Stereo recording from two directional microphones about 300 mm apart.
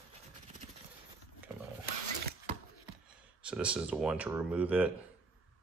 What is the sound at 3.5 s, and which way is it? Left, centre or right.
Speech, centre.